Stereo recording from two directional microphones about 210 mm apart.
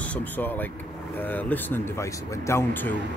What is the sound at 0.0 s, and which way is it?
Speech, 5° left (ahead or behind).